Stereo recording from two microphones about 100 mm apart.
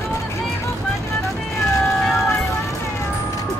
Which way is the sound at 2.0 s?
Centre (ahead or behind).